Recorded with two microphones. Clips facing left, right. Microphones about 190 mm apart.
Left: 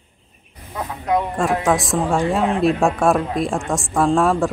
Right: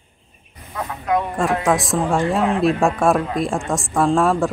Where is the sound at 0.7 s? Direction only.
15° left (ahead or behind).